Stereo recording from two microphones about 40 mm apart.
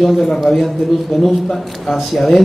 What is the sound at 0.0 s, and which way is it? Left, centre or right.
A man's voice, centre.